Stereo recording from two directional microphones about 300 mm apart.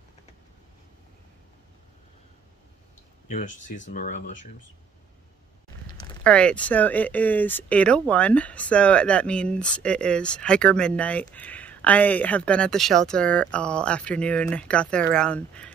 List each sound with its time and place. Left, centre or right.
3.3 s speech: left
6.0 s speech: centre